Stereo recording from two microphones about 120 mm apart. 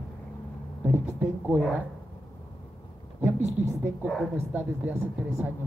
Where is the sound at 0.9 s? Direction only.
15° right (ahead or behind).